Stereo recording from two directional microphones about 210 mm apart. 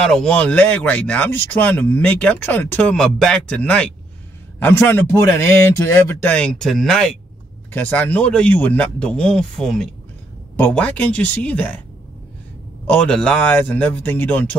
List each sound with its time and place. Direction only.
0.0 s a man's voice: 5° left (ahead or behind)
12.8 s a man's voice: 5° left (ahead or behind)